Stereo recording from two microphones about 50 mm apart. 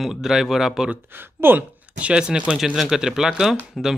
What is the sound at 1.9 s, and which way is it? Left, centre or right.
Speech, right.